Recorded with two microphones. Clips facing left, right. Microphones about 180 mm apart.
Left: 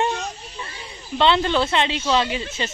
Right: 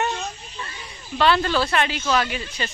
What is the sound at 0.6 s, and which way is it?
Speech, 20° left (ahead or behind).